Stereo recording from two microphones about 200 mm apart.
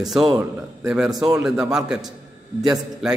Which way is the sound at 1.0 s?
20° right (ahead or behind).